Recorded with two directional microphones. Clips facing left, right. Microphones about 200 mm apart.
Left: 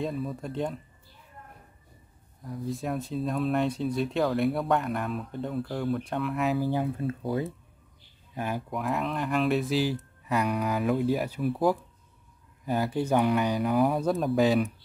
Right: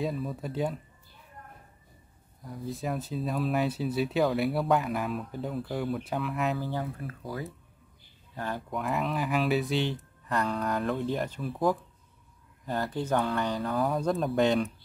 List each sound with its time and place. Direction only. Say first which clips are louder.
0.0 s speech: even; centre (ahead or behind)
2.4 s speech: left 2 dB; centre (ahead or behind)
6.7 s speech: left 6 dB; 20° left (ahead or behind)
8.4 s speech: left 3 dB; 10° left (ahead or behind)
8.6 s speech: right 2 dB; centre (ahead or behind)